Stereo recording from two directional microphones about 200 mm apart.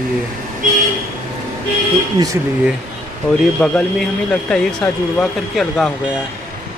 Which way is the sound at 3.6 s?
5° left (ahead or behind).